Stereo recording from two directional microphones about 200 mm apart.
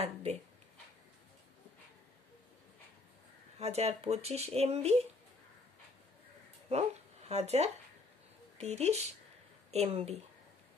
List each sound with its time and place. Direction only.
0.0 s speech: 30° right (ahead or behind)
3.5 s speech: 30° right (ahead or behind)
6.7 s speech: 30° right (ahead or behind)